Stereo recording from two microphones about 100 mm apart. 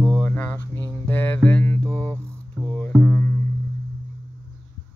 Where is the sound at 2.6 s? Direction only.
20° left (ahead or behind).